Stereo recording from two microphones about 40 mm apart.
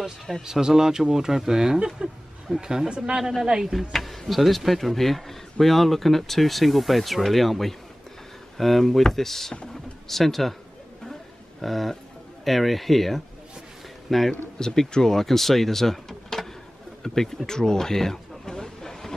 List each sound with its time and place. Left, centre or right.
0.5 s speech: centre
3.7 s speech: centre
11.6 s speech: centre
14.6 s speech: centre
17.5 s a sound: centre